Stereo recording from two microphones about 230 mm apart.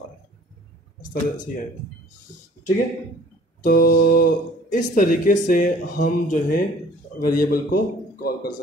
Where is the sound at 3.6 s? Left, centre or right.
Left.